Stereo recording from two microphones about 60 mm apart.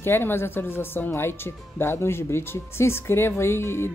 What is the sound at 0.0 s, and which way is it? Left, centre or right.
A woman's voice, left.